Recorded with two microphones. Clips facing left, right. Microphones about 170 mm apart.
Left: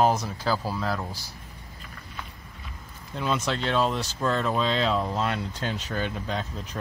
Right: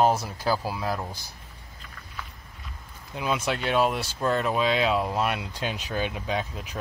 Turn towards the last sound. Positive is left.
turn(degrees=-10)  # may be behind; listen again after turning